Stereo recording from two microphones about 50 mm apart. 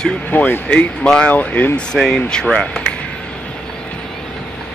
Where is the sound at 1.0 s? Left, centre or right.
Centre.